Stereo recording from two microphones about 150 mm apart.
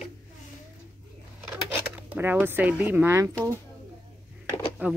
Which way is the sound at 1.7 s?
10° right (ahead or behind).